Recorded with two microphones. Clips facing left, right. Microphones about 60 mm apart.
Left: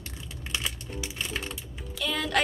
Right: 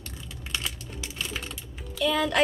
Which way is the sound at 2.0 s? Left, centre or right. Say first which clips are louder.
Right 4 dB; centre.